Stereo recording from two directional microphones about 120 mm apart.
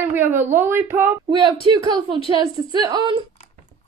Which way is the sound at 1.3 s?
40° right (ahead or behind).